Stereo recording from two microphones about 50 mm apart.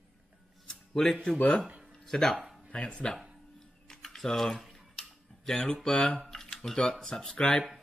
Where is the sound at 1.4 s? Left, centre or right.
Centre.